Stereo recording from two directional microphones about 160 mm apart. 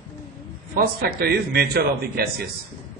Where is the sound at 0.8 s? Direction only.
75° right (ahead or behind).